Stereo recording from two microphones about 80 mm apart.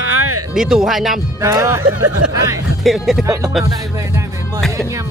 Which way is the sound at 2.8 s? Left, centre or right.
Centre.